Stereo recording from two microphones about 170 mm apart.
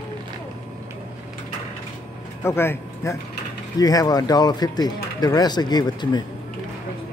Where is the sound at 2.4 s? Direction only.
15° left (ahead or behind).